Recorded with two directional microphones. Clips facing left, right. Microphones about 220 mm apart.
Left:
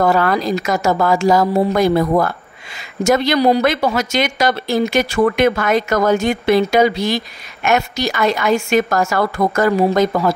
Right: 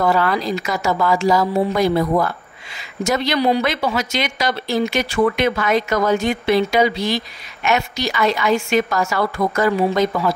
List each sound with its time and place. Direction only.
0.0 s speech: 45° left (ahead or behind)